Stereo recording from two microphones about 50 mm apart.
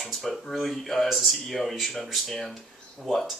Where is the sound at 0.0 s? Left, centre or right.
Centre.